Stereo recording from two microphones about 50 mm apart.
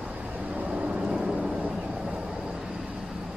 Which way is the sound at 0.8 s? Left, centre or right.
Centre.